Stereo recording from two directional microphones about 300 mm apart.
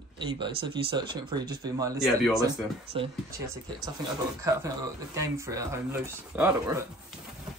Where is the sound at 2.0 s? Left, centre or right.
Centre.